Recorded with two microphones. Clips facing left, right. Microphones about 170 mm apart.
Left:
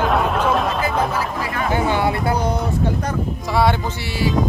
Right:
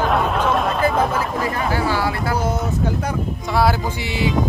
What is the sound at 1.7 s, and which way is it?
Speech, 20° left (ahead or behind).